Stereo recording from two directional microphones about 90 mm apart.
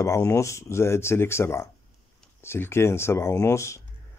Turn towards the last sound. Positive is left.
turn(degrees=30)  # may be behind; listen again after turning